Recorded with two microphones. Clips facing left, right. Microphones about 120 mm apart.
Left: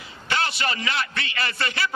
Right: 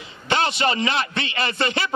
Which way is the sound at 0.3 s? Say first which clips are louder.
Right 5 dB; 20° right (ahead or behind).